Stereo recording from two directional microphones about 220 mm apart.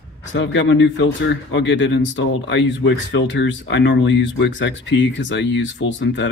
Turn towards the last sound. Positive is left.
turn(degrees=55)  # may be behind; listen again after turning